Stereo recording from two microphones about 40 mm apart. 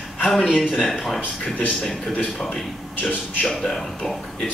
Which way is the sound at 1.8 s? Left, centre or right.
Centre.